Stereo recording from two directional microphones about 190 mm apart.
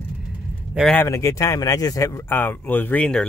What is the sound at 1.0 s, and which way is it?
Speech, 15° left (ahead or behind).